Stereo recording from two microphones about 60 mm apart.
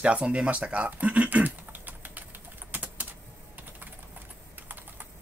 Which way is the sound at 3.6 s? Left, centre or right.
Right.